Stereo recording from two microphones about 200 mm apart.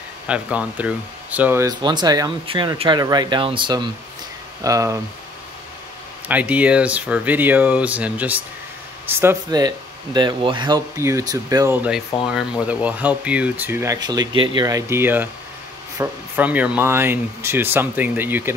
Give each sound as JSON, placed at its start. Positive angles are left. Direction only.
{"t": 0.3, "sound": "speech", "side_deg": -5}
{"t": 6.2, "sound": "speech", "side_deg": -5}